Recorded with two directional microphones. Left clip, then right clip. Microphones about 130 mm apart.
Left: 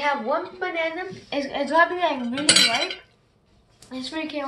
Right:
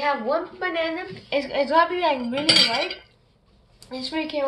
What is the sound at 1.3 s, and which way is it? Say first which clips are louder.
Speech: right 2 dB; 40° right (ahead or behind).